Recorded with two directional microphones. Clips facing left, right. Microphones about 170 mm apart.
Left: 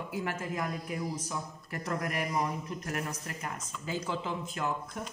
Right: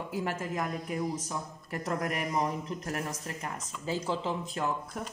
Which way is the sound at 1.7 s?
40° right (ahead or behind).